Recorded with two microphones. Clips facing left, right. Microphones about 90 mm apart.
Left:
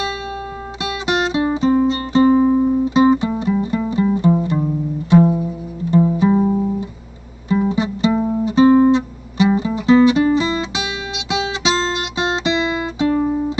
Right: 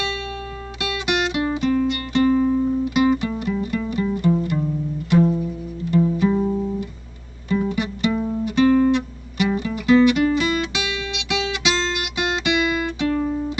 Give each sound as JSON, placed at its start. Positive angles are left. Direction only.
{"t": 0.8, "sound": "music", "side_deg": 30}
{"t": 7.4, "sound": "guitar", "side_deg": 25}